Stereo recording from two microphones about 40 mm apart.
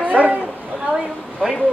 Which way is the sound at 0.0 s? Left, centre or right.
Right.